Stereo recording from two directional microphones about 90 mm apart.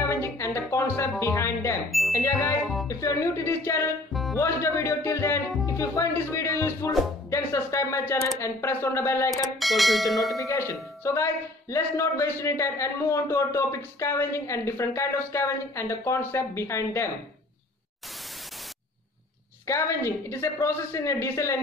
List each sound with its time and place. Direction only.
0.0 s music: 30° left (ahead or behind)
1.2 s a woman's voice: 30° left (ahead or behind)
1.9 s music: centre (ahead or behind)
2.1 s speech: 35° left (ahead or behind)
4.1 s music: centre (ahead or behind)
4.4 s speech: 30° left (ahead or behind)
9.6 s bell: centre (ahead or behind)
10.4 s speech: 35° left (ahead or behind)
19.6 s speech: 30° left (ahead or behind)